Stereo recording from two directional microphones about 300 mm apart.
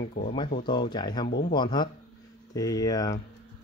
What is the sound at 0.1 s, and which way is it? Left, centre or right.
Speech, left.